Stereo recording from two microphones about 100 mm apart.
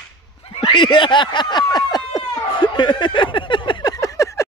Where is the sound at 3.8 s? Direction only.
35° left (ahead or behind).